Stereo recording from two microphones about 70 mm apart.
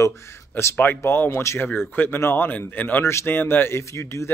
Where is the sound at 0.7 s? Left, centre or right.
Left.